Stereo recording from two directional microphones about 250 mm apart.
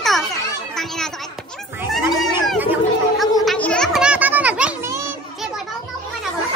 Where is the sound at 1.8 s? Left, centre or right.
Centre.